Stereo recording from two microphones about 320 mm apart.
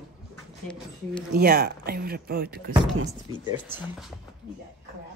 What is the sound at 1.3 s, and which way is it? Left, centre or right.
Speech, right.